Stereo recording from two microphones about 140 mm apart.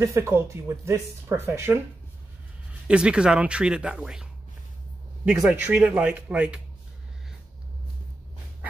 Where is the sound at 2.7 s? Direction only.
5° right (ahead or behind).